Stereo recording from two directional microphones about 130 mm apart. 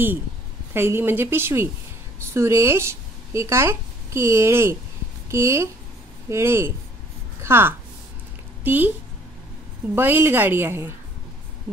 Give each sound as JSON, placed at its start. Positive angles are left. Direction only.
{"t": 0.7, "sound": "a woman's voice", "side_deg": -15}
{"t": 9.9, "sound": "a woman's voice", "side_deg": -15}